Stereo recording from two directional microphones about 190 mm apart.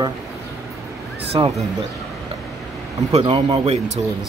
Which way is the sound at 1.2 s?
30° right (ahead or behind).